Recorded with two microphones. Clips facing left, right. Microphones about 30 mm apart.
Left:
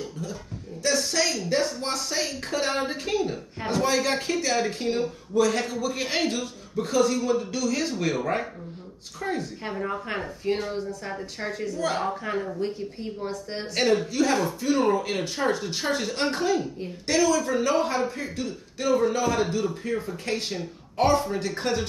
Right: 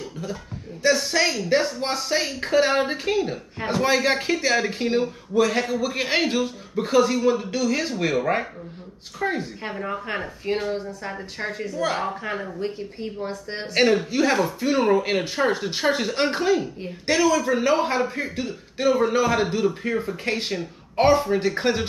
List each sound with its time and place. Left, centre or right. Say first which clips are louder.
0.8 s a woman's voice: right 4 dB; right